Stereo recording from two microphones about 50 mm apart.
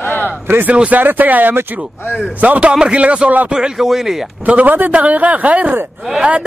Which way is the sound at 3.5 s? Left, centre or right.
Centre.